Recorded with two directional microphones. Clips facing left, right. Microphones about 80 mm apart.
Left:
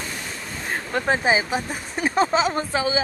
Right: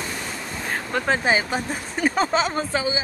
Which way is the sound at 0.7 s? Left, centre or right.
Centre.